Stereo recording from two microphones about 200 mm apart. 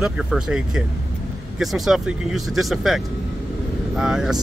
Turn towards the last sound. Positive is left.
turn(degrees=0)  # may be behind; listen again after turning